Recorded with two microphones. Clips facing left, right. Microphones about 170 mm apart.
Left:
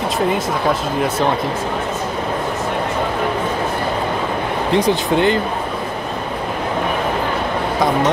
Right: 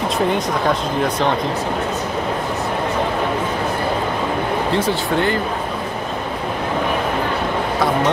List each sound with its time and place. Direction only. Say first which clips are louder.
4.7 s speech: left 6 dB; 15° left (ahead or behind)